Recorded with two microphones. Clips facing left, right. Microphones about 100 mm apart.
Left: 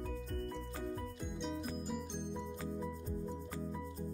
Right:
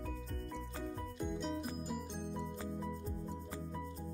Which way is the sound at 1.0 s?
Centre (ahead or behind).